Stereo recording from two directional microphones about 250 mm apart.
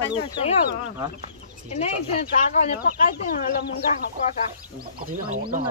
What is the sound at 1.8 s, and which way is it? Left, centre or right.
Speech, left.